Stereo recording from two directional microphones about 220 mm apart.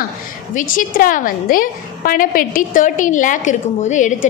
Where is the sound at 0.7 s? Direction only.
40° left (ahead or behind).